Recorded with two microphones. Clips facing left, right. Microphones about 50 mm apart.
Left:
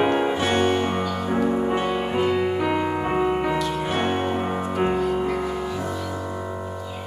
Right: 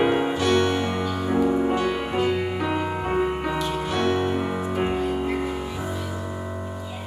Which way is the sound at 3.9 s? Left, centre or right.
Left.